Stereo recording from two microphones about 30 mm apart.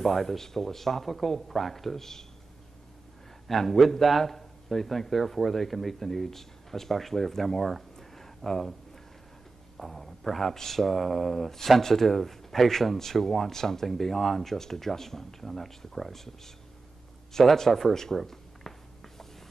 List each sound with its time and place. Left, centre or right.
0.0 s speech: centre
3.4 s a man's voice: centre
9.8 s a man's voice: centre
17.5 s speech: centre
18.1 s a sound: centre